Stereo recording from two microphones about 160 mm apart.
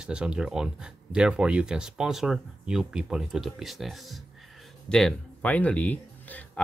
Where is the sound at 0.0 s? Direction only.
5° right (ahead or behind).